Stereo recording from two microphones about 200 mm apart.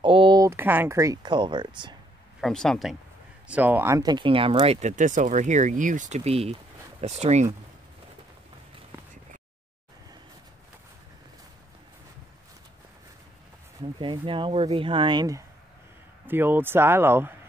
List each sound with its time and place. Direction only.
0.0 s speech: 25° right (ahead or behind)
2.4 s speech: centre (ahead or behind); by 7.4 s 35° right (ahead or behind)
13.7 s speech: 25° right (ahead or behind)